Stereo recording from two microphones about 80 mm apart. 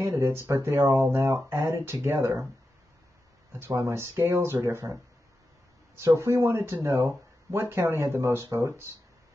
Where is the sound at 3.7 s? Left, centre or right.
Right.